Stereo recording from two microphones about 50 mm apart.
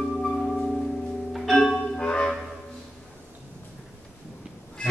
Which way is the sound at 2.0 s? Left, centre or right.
Centre.